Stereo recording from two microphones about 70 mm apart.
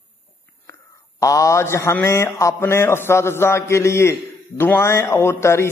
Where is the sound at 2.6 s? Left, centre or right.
Left.